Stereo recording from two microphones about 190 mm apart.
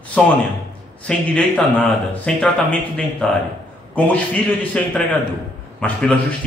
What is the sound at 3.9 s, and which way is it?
A man's voice, 5° left (ahead or behind).